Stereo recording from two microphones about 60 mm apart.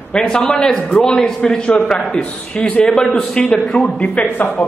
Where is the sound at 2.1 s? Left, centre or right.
Centre.